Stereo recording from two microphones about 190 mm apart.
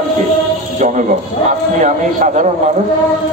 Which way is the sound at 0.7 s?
40° right (ahead or behind).